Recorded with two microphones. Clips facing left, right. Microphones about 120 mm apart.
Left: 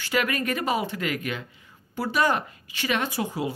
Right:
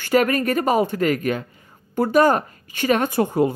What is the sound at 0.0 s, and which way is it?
Speech, 45° right (ahead or behind).